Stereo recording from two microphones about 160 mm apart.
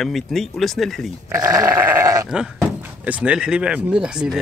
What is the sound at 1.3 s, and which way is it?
Goat, 20° right (ahead or behind).